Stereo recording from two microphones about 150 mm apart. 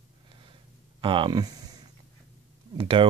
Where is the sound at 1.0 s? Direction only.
35° right (ahead or behind).